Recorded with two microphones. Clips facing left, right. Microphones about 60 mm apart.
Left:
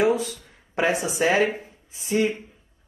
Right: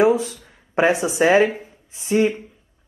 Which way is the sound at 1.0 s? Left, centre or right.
Right.